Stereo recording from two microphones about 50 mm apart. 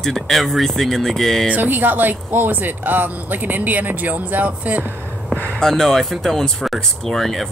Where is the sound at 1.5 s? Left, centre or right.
Right.